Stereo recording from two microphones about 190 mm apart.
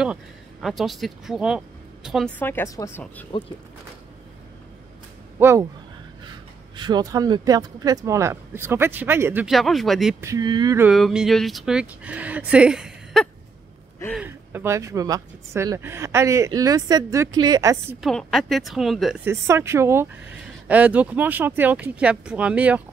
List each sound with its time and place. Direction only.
0.0 s speech: centre (ahead or behind); by 3.5 s 25° left (ahead or behind)
5.4 s speech: 15° right (ahead or behind)
6.8 s speech: 20° right (ahead or behind)
9.5 s speech: centre (ahead or behind)
10.2 s speech: 20° right (ahead or behind)
10.8 s speech: centre (ahead or behind)
18.0 s speech: centre (ahead or behind)
19.2 s speech: 15° right (ahead or behind)